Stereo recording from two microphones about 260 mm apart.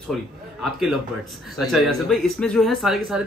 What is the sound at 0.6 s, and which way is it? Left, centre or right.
A man's voice, centre.